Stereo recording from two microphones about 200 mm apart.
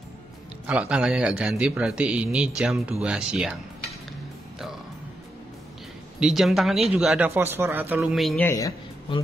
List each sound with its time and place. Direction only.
0.7 s a man's voice: 5° right (ahead or behind)
6.1 s a man's voice: centre (ahead or behind)
8.5 s speech: 15° left (ahead or behind)